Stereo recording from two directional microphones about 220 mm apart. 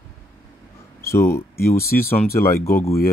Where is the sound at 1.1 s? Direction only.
10° left (ahead or behind).